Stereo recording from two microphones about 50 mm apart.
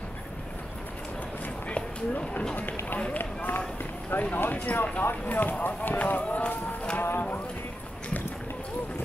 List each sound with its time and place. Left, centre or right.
1.7 s a sound: left
3.2 s run: left
4.1 s speech: left
5.0 s speech: left
6.2 s speech: left
7.0 s speech: left